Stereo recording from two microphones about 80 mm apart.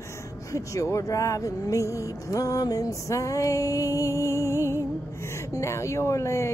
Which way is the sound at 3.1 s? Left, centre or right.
Left.